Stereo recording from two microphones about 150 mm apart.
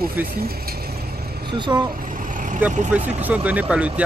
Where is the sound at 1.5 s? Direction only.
30° right (ahead or behind).